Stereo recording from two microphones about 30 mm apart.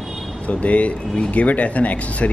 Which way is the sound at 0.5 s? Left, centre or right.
Left.